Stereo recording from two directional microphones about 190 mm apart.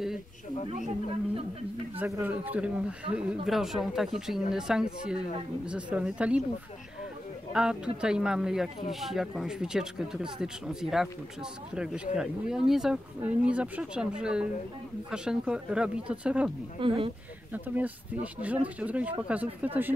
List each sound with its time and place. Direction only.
2.0 s speech: 15° right (ahead or behind)
7.5 s speech: 5° right (ahead or behind)
16.8 s speech: 30° right (ahead or behind)
17.5 s speech: 10° right (ahead or behind)